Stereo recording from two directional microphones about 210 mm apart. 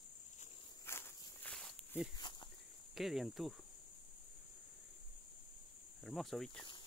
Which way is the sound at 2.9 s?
Centre (ahead or behind).